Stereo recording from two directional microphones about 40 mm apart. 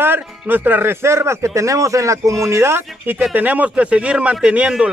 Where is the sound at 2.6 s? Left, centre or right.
Right.